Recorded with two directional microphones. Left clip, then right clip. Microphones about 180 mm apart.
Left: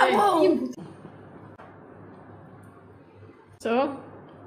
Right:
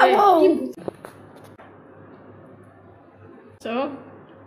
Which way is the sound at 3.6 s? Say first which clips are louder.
Left 2 dB; 45° left (ahead or behind).